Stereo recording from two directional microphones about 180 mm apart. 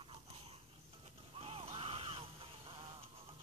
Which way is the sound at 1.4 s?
30° right (ahead or behind).